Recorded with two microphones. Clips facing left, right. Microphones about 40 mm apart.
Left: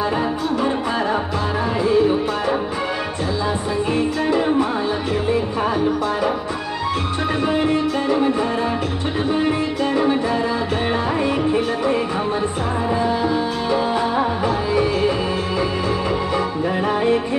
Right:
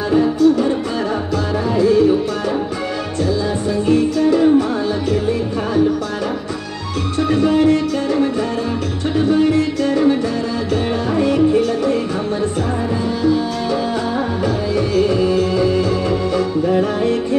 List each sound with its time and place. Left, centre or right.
0.1 s music: centre
1.8 s music: centre
3.8 s music: centre
7.2 s music: centre
11.1 s music: centre
13.2 s music: centre